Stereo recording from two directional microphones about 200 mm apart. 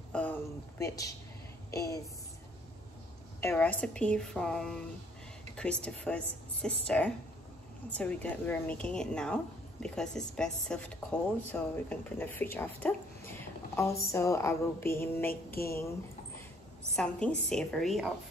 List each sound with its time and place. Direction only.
0.1 s a sound: 10° left (ahead or behind)
1.7 s a woman's voice: 15° left (ahead or behind)
3.3 s a woman's voice: 10° left (ahead or behind)
15.5 s a woman's voice: 50° left (ahead or behind)
16.9 s speech: 5° left (ahead or behind)